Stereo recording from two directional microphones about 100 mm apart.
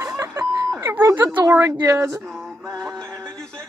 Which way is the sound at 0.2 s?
30° right (ahead or behind).